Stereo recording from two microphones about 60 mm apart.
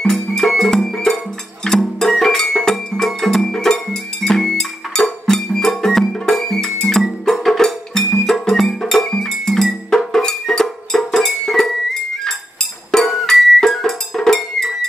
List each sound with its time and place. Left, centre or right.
0.0 s music: centre